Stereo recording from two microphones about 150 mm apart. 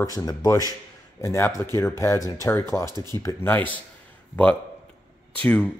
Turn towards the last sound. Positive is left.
turn(degrees=10)  # may be behind; listen again after turning